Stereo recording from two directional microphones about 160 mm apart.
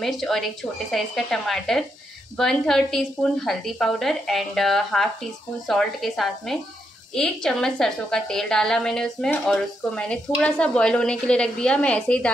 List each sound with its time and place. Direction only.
0.0 s a woman's voice: centre (ahead or behind)